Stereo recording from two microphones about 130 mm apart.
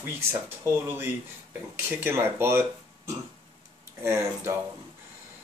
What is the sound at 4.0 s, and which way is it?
Speech, 20° right (ahead or behind).